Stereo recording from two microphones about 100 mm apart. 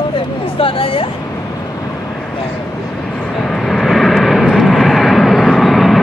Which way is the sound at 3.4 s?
5° left (ahead or behind).